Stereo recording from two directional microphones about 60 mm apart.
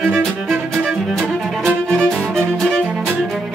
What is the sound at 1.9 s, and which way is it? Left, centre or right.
Music, centre.